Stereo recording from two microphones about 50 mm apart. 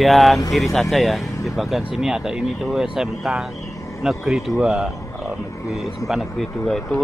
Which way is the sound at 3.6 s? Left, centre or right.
Left.